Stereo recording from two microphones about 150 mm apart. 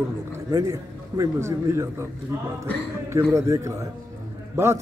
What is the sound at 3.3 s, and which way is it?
Speech, 20° right (ahead or behind).